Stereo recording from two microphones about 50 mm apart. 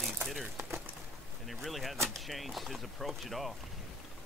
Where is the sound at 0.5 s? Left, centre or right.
Right.